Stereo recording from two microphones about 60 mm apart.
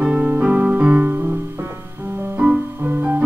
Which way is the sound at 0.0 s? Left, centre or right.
Centre.